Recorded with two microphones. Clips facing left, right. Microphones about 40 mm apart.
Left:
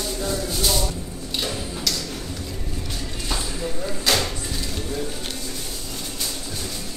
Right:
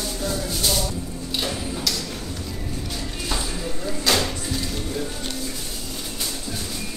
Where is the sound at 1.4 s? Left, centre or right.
Centre.